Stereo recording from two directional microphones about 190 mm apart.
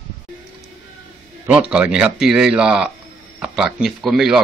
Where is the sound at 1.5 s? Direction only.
5° right (ahead or behind).